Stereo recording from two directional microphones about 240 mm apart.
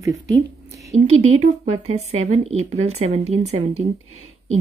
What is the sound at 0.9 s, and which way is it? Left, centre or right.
Speech, right.